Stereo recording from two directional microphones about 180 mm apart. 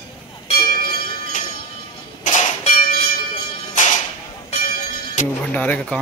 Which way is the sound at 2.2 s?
45° left (ahead or behind).